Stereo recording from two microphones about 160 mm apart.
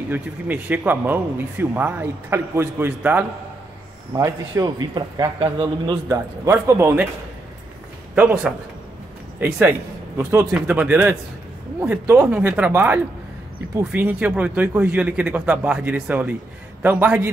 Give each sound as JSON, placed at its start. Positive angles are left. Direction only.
{"t": 0.1, "sound": "a man's voice", "side_deg": -10}
{"t": 8.1, "sound": "speech", "side_deg": -5}